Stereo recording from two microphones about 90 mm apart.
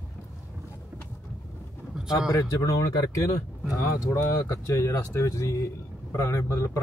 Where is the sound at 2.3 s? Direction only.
35° left (ahead or behind).